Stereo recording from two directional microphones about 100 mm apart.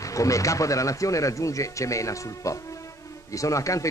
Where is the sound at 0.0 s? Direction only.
35° left (ahead or behind).